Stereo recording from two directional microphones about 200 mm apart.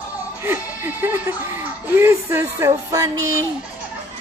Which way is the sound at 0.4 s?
10° right (ahead or behind).